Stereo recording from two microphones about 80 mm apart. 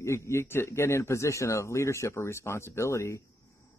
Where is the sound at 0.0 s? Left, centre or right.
Left.